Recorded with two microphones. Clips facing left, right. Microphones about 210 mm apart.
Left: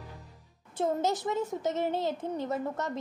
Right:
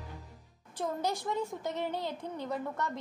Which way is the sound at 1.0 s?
20° left (ahead or behind).